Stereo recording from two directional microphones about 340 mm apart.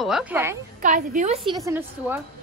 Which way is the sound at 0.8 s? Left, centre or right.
Right.